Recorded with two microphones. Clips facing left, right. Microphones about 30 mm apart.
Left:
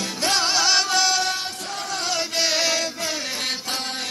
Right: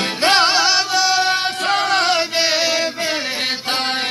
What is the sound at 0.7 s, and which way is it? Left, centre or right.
Music, centre.